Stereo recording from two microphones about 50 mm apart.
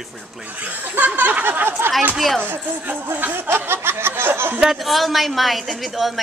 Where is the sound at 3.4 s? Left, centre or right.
Right.